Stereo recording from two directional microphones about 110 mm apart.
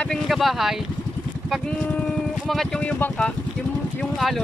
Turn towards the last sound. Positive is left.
turn(degrees=0)  # may be behind; listen again after turning